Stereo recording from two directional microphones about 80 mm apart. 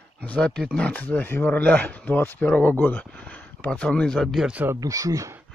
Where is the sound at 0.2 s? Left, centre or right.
Centre.